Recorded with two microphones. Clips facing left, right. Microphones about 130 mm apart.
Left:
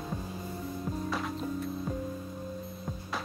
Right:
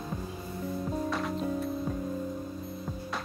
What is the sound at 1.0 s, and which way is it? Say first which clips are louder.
Music: right 2 dB; centre (ahead or behind).